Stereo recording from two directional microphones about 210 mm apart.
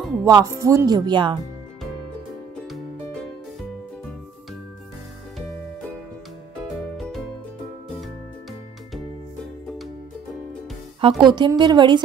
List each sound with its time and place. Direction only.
0.2 s speech: 15° right (ahead or behind)
7.0 s music: centre (ahead or behind)
11.0 s a woman's voice: 25° right (ahead or behind)